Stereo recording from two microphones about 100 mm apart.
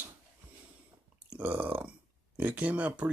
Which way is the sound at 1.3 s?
15° right (ahead or behind).